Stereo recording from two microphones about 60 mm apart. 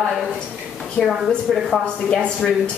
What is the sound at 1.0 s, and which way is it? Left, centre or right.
A woman's voice, centre.